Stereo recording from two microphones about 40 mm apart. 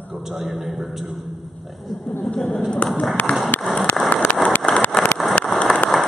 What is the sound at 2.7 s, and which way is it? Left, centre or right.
Speech, left.